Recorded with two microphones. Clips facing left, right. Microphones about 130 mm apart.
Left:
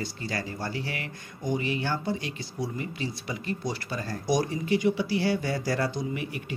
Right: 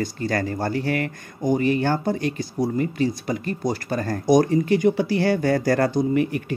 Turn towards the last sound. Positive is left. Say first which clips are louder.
# right 11 dB
turn(degrees=-50)  # may be behind; listen again after turning